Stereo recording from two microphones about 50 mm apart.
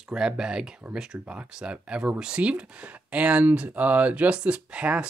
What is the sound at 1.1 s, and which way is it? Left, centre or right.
Speech, right.